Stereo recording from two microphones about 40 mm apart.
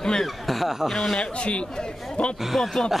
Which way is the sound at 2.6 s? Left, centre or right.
Centre.